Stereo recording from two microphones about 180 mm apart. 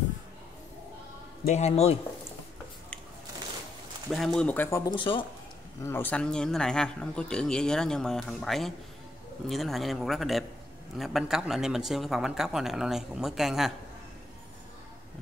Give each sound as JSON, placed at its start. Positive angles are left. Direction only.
{"t": 1.4, "sound": "a man's voice", "side_deg": 40}
{"t": 4.1, "sound": "speech", "side_deg": 5}
{"t": 4.9, "sound": "speech", "side_deg": 30}
{"t": 5.9, "sound": "speech", "side_deg": 10}